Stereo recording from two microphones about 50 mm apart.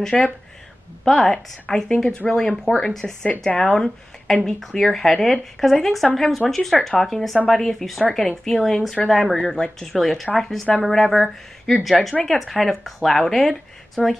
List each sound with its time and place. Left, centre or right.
0.0 s a woman's voice: centre
1.0 s a woman's voice: centre